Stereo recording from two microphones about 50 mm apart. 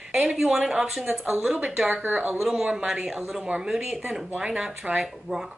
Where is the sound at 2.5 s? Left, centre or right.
Centre.